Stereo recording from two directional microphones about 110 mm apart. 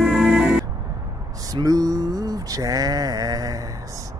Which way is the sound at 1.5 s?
35° right (ahead or behind).